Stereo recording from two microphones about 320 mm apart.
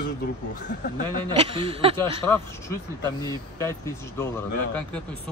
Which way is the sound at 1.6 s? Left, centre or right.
Centre.